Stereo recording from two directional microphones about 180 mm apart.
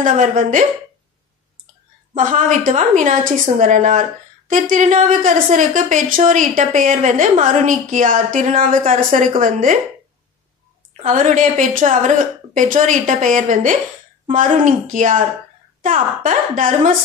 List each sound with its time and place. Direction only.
0.0 s a woman's voice: 45° right (ahead or behind)
2.1 s a woman's voice: 45° right (ahead or behind)
10.9 s a woman's voice: 45° right (ahead or behind)